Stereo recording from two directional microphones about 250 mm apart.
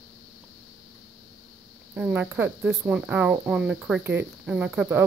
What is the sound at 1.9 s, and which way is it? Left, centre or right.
Speech, centre.